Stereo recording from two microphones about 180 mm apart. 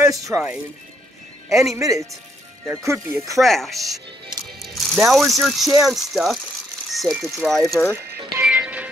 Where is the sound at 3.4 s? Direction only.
Centre (ahead or behind).